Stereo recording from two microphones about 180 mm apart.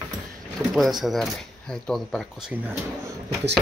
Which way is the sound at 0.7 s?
Centre (ahead or behind).